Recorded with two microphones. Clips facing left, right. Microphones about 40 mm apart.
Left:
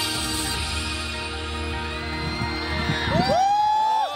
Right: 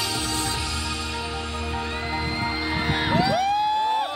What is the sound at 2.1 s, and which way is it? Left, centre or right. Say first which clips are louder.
Music: right 2 dB; centre.